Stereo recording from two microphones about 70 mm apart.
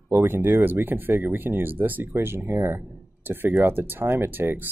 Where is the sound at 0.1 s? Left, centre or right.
Right.